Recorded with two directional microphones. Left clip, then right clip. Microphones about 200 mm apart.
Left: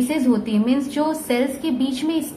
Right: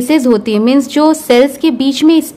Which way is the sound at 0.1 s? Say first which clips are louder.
Right 11 dB; 50° right (ahead or behind).